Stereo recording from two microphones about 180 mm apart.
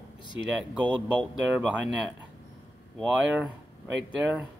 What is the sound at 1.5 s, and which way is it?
Speech, 5° right (ahead or behind).